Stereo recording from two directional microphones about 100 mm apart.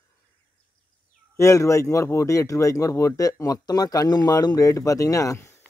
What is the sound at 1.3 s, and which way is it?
Speech, 30° left (ahead or behind).